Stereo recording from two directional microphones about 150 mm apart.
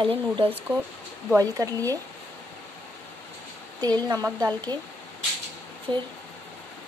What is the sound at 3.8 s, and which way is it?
Speech, 25° right (ahead or behind).